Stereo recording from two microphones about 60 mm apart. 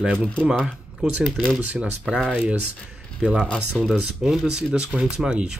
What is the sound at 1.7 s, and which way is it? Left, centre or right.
Speech, centre.